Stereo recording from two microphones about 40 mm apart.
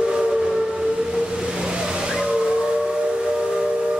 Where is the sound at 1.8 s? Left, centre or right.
Centre.